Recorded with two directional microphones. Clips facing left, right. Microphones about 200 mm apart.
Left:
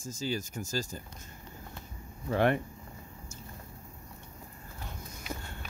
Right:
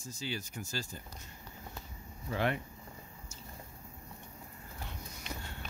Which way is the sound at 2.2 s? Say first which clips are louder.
Left 7 dB; 55° left (ahead or behind).